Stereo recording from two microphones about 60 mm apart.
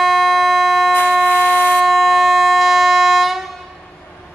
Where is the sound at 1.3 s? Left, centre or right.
Left.